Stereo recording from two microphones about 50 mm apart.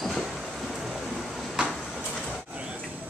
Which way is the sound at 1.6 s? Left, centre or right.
Centre.